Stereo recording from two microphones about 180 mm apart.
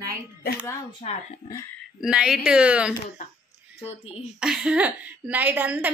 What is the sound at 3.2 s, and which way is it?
Speech, 50° left (ahead or behind).